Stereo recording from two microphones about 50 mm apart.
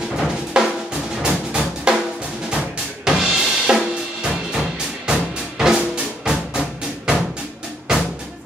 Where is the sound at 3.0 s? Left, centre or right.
Centre.